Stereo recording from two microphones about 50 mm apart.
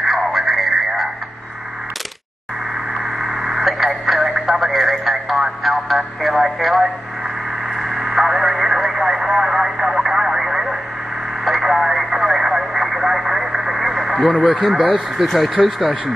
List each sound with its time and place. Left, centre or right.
0.0 s music: centre
3.2 s radio: centre
7.8 s radio: centre
14.3 s speech: left
15.1 s speech: centre